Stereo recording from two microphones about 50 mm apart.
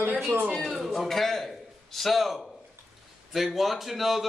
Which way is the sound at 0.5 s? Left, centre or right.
Centre.